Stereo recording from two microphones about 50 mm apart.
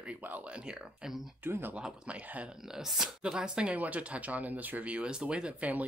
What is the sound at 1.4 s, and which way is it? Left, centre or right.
Speech, right.